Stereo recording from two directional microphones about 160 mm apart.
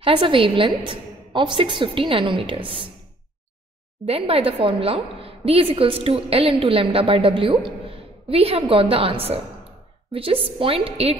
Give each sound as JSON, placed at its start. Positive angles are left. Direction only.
{"t": 0.0, "sound": "a woman's voice", "side_deg": -30}
{"t": 4.0, "sound": "a woman's voice", "side_deg": -40}